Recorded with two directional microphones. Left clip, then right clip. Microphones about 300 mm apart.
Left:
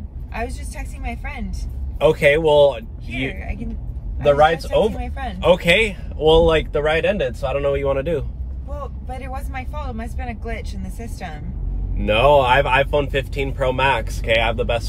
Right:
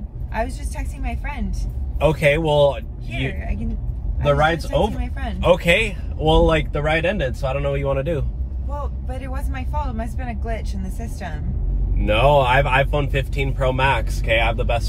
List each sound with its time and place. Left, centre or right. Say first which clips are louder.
0.3 s speech: right 3 dB; centre
2.0 s speech: left 3 dB; centre
4.2 s speech: left 4 dB; centre
5.4 s speech: left 1 dB; centre
9.1 s speech: left 4 dB; centre
12.0 s speech: left 2 dB; centre